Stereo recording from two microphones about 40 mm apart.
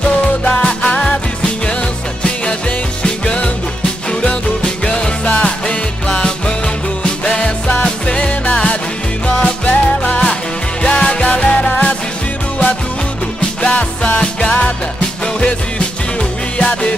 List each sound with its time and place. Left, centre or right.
0.7 s music: left
3.0 s music: left
5.2 s music: left
9.4 s music: left
10.8 s music: left
13.6 s music: left